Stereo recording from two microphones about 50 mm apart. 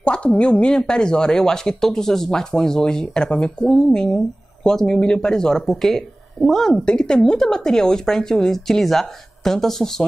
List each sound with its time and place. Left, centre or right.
0.0 s speech: left; by 6.7 s centre
6.7 s speech: centre